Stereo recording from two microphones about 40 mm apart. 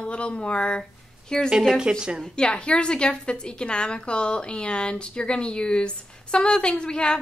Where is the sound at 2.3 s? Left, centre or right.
Left.